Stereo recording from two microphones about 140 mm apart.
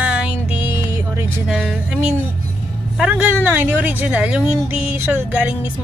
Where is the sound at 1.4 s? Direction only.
5° right (ahead or behind).